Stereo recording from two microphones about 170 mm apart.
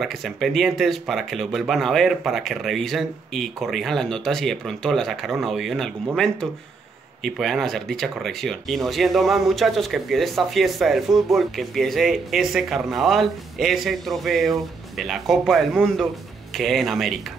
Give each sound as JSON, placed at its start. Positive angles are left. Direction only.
{"t": 0.0, "sound": "speech", "side_deg": 0}
{"t": 7.2, "sound": "speech", "side_deg": 0}